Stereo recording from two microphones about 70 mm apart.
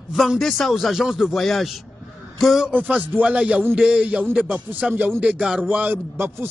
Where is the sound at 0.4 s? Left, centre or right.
Centre.